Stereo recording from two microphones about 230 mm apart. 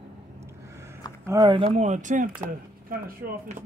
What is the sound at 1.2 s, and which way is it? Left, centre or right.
Speech, centre.